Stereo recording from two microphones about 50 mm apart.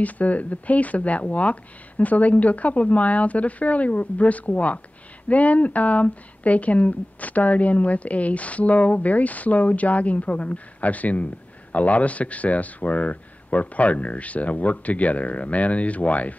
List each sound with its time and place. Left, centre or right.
0.0 s speech: left